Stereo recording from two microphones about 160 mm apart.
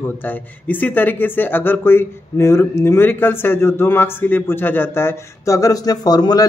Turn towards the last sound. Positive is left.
turn(degrees=25)  # may be behind; listen again after turning